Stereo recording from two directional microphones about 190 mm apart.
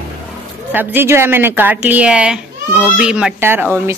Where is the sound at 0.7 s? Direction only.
10° right (ahead or behind).